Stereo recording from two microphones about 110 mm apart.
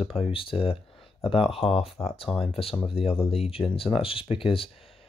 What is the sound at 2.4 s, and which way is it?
Speech, 60° left (ahead or behind).